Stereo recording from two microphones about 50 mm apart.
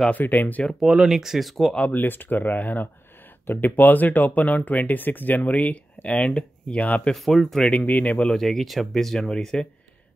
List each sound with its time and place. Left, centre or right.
0.2 s speech: left
0.7 s speech: centre
1.8 s speech: left
2.0 s speech: left
7.2 s speech: centre
7.6 s speech: left
8.3 s speech: centre